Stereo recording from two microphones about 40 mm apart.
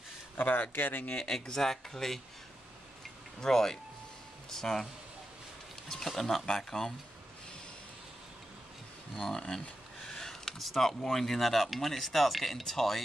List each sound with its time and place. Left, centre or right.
0.4 s speech: left
1.1 s speech: centre
3.3 s speech: centre
5.9 s speech: centre
9.3 s speech: centre
10.0 s a sound: centre
11.1 s speech: centre